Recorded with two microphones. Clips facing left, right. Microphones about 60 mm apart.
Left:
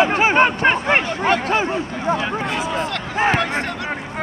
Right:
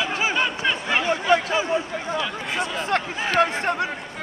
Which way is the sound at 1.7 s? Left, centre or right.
Left.